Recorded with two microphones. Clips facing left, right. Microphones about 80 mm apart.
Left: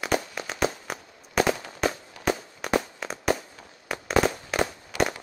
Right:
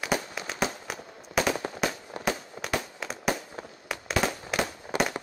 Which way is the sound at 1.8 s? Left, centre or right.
Centre.